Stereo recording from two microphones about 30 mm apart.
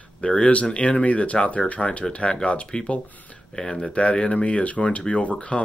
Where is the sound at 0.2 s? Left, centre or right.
Left.